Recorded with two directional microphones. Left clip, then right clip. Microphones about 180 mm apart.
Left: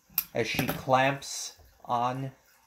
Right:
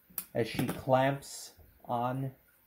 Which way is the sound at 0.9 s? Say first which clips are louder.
Left 3 dB; 10° right (ahead or behind).